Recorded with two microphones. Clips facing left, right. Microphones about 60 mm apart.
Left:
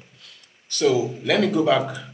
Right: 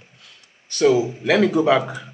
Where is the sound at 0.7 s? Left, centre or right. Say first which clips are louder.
Right 3 dB; right.